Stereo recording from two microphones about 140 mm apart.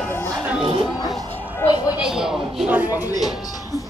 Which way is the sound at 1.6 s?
25° left (ahead or behind).